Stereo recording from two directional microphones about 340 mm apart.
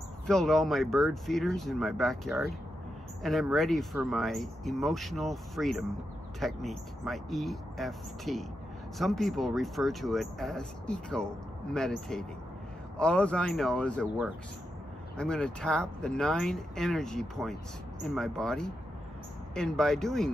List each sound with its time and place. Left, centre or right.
0.3 s speech: centre